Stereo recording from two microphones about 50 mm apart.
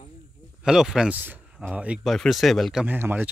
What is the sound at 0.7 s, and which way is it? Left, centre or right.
Speech, centre.